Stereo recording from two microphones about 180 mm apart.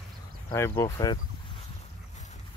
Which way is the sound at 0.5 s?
15° left (ahead or behind).